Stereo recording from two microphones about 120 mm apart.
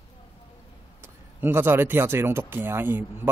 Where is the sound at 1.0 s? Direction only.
15° right (ahead or behind).